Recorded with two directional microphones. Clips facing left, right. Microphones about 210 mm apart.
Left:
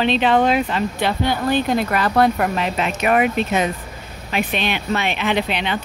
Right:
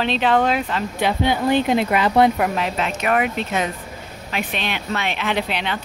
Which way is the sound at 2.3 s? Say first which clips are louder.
Left 1 dB; 5° right (ahead or behind).